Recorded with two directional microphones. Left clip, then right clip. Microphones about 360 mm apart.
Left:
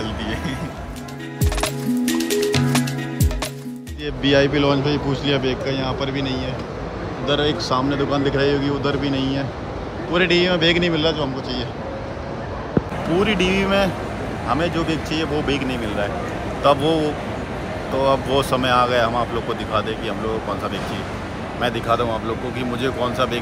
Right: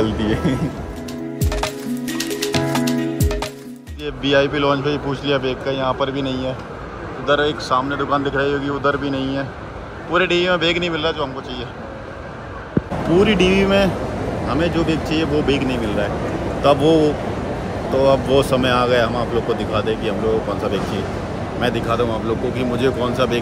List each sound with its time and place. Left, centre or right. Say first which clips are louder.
0.0 s music: right 7 dB; right
1.4 s music: left 1 dB; centre
4.0 s speech: even; centre
13.1 s speech: right 4 dB; centre
21.5 s speech: right 1 dB; centre